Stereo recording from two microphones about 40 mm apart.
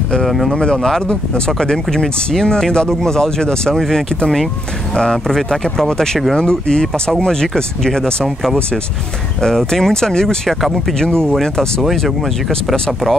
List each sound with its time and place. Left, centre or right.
0.2 s speech: centre
0.8 s speech: centre
9.4 s speech: centre
11.9 s speech: centre